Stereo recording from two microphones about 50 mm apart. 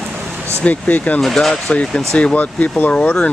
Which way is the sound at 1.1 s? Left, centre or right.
Centre.